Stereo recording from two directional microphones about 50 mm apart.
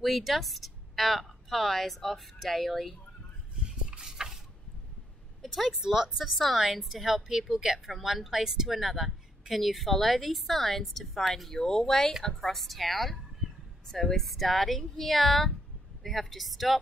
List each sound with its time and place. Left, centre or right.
0.0 s a woman's voice: centre
3.5 s a sound: centre
5.5 s speech: centre
6.3 s a woman's voice: centre